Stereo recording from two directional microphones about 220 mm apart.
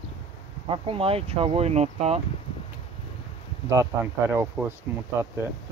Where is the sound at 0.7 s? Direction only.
25° right (ahead or behind).